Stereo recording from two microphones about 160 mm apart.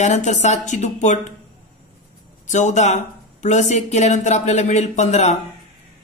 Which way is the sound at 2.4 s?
50° left (ahead or behind).